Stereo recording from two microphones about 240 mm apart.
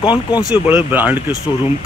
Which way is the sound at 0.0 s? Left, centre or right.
Centre.